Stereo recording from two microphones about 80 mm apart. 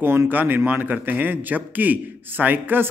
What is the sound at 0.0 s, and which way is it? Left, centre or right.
A man's voice, right.